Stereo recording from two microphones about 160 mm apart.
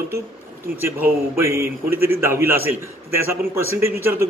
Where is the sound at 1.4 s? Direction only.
15° right (ahead or behind).